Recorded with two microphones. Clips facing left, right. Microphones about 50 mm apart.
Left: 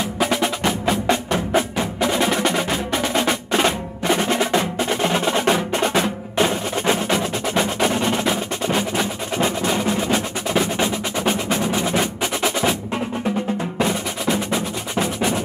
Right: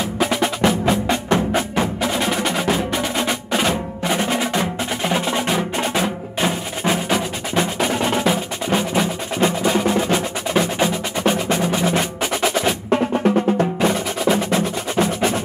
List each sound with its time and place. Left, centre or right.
0.0 s music: centre
5.9 s percussion: centre
9.9 s music: centre
12.9 s music: right
14.2 s music: centre